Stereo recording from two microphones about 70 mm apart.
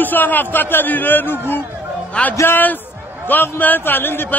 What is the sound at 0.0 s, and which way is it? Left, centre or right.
A man's voice, left.